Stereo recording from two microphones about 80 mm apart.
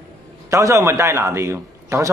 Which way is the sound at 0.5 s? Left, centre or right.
Right.